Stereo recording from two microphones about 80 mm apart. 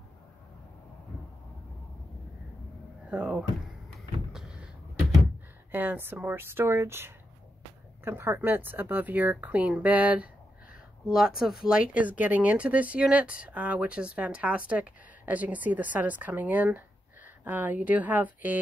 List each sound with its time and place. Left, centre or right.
3.1 s speech: centre
4.3 s vehicle: centre
5.7 s speech: right
11.1 s speech: centre; by 18.6 s right